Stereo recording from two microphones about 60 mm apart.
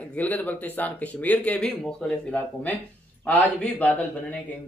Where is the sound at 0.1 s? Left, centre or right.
Left.